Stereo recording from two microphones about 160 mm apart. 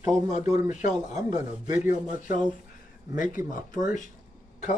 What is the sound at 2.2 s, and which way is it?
Speech, 55° left (ahead or behind).